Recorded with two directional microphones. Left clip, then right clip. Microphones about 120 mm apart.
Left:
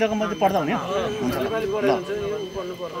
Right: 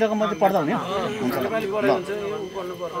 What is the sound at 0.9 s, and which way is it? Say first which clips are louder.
Speech: left 1 dB; 40° right (ahead or behind).